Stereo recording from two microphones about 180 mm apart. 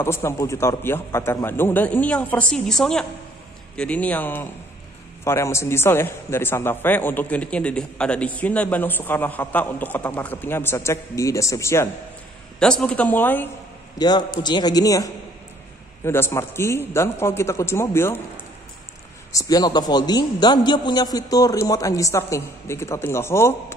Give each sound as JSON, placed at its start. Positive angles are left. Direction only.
{"t": 0.0, "sound": "a man's voice", "side_deg": 15}
{"t": 12.5, "sound": "a man's voice", "side_deg": 5}
{"t": 13.9, "sound": "a man's voice", "side_deg": 25}
{"t": 19.3, "sound": "a man's voice", "side_deg": 20}